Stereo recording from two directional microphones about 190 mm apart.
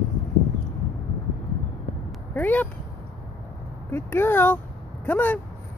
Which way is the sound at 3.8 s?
10° left (ahead or behind).